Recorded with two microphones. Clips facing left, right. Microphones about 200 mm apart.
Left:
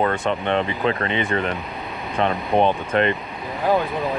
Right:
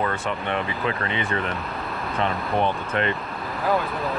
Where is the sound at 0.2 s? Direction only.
20° left (ahead or behind).